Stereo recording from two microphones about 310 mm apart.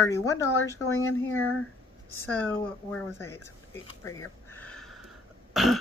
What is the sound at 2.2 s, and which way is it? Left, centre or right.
Speech, centre.